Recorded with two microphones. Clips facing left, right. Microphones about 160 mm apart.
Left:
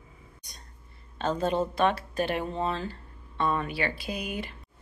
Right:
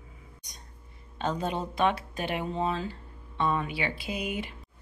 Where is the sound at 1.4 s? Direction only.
15° right (ahead or behind).